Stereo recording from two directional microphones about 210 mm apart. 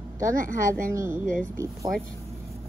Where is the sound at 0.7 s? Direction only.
15° right (ahead or behind).